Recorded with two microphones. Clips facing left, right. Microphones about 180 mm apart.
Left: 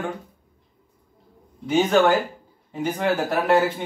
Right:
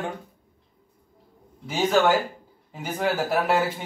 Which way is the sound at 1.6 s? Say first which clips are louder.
Left 3 dB; 5° right (ahead or behind).